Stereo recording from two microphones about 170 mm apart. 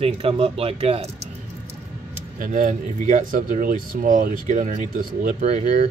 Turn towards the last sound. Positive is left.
turn(degrees=-45)  # may be behind; listen again after turning